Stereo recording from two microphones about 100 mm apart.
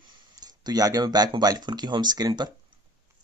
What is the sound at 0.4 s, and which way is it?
Speech, 40° right (ahead or behind).